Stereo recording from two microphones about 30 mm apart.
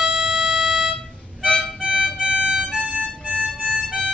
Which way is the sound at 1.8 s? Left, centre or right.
Right.